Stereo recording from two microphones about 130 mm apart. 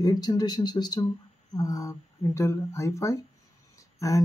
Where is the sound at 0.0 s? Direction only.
30° left (ahead or behind).